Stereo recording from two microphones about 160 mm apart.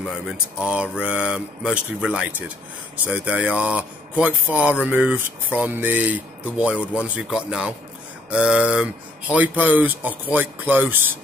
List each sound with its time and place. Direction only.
0.0 s speech: 5° right (ahead or behind)
7.2 s a sound: 5° right (ahead or behind)
9.3 s speech: 10° right (ahead or behind)